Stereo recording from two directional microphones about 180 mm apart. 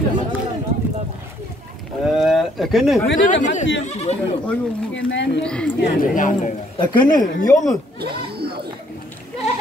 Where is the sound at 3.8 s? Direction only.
35° left (ahead or behind).